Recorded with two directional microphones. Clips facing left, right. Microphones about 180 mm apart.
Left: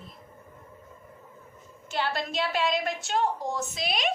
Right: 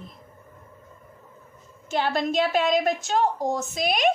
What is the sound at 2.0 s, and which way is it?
A woman's voice, 50° right (ahead or behind).